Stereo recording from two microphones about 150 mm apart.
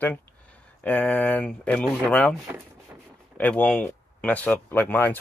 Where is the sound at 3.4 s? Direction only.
10° left (ahead or behind).